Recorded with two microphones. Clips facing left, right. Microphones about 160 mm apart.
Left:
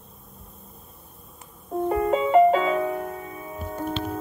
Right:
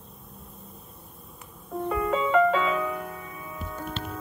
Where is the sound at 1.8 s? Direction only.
35° left (ahead or behind).